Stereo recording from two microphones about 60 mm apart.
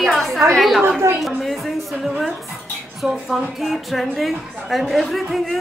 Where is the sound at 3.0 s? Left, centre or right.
Centre.